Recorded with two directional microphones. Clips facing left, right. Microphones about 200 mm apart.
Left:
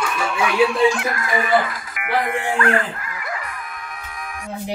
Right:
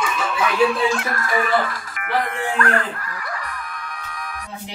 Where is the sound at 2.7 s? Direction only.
20° left (ahead or behind).